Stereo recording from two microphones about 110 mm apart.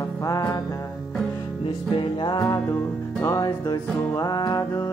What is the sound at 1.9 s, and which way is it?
Music, 45° left (ahead or behind).